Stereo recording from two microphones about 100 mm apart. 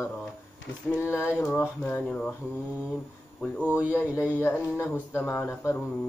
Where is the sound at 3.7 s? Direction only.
15° right (ahead or behind).